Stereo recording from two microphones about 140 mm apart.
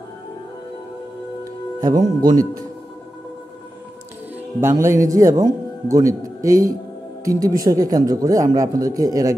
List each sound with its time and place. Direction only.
1.8 s a man's voice: 30° right (ahead or behind)
4.6 s a man's voice: 20° right (ahead or behind)